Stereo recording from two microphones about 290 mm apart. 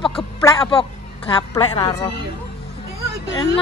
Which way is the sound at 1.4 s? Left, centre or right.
Centre.